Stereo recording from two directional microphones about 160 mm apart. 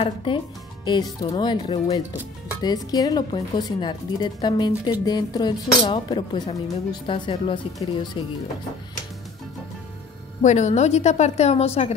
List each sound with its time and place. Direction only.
0.0 s speech: 35° left (ahead or behind)
10.4 s a woman's voice: 45° left (ahead or behind)